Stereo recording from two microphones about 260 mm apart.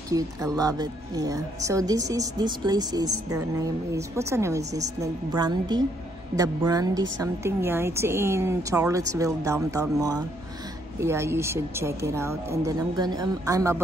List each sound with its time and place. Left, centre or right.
0.1 s a woman's voice: centre